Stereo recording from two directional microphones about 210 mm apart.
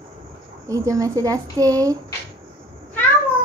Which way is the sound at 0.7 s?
15° right (ahead or behind).